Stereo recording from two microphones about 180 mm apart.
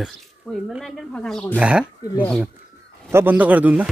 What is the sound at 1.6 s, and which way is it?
Speech, 5° right (ahead or behind).